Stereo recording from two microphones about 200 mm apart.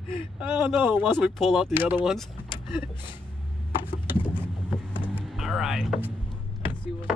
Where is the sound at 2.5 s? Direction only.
25° left (ahead or behind).